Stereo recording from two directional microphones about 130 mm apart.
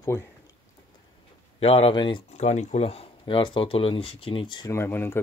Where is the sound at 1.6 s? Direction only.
50° left (ahead or behind).